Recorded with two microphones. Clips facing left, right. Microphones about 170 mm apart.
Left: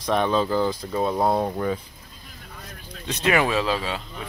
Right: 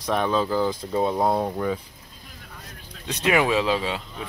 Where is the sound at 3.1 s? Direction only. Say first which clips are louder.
Even; 10° right (ahead or behind).